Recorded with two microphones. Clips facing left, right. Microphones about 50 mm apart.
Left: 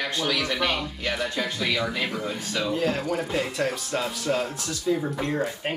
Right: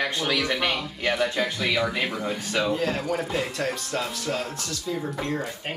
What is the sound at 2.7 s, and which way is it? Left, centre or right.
Speech, centre.